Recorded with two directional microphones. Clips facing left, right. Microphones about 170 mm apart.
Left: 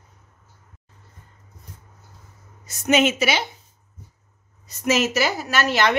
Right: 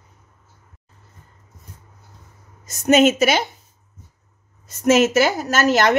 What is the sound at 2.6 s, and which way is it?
Speech, 45° right (ahead or behind).